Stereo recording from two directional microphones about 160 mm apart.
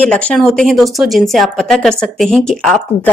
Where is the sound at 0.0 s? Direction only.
5° left (ahead or behind).